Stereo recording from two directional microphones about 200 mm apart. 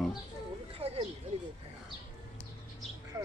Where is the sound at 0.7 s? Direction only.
30° right (ahead or behind).